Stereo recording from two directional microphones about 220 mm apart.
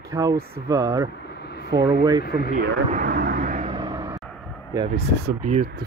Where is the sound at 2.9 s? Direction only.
45° right (ahead or behind).